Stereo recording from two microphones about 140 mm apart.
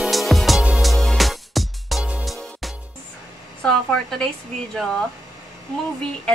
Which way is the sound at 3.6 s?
5° left (ahead or behind).